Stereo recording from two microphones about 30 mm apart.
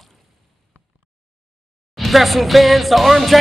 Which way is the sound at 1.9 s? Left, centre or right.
Centre.